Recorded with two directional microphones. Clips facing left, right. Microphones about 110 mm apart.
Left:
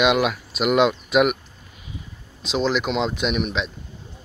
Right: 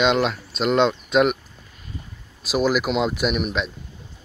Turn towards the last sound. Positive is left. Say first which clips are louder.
# right 1 dB
turn(degrees=0)  # may be behind; listen again after turning